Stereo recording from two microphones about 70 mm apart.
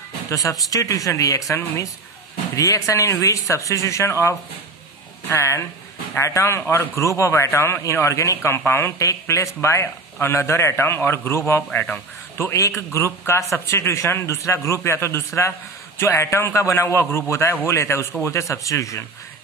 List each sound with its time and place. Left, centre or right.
0.3 s a man's voice: left
6.6 s a man's voice: left
7.0 s a man's voice: left
8.9 s a man's voice: left